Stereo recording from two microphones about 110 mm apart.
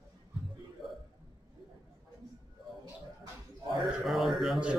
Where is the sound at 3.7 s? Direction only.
Centre (ahead or behind).